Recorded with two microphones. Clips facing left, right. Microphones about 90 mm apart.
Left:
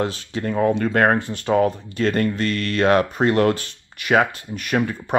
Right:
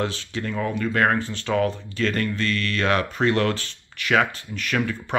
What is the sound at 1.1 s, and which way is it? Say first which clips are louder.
Speech: left 3 dB; 15° left (ahead or behind).